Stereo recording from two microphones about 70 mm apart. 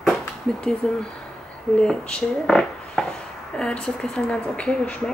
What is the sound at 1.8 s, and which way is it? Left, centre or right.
Speech, centre.